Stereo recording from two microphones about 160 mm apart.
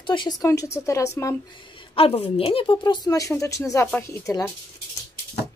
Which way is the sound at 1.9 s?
40° left (ahead or behind).